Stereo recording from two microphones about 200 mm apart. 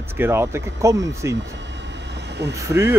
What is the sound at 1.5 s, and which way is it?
Vehicle, 60° right (ahead or behind).